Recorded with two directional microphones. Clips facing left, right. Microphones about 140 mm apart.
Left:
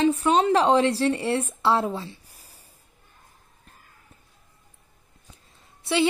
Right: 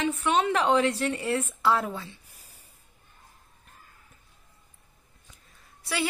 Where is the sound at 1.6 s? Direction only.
30° left (ahead or behind).